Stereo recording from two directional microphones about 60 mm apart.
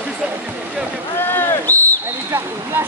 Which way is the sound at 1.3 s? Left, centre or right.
Left.